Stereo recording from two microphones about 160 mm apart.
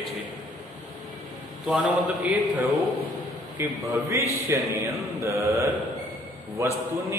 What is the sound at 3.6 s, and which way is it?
A man's voice, 15° right (ahead or behind).